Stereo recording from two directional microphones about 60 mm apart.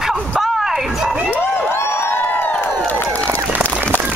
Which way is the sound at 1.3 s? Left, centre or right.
Left.